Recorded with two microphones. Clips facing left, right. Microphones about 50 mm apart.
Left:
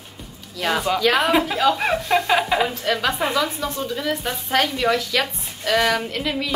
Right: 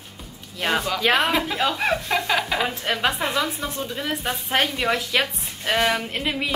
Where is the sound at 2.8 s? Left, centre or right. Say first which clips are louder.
Left 2 dB; centre.